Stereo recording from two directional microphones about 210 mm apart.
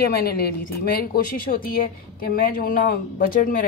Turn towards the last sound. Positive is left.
turn(degrees=40)  # may be behind; listen again after turning